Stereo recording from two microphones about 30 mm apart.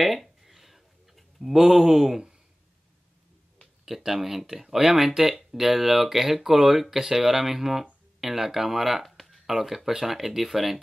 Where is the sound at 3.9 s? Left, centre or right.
Centre.